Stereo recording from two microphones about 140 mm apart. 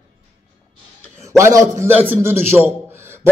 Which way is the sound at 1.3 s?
20° right (ahead or behind).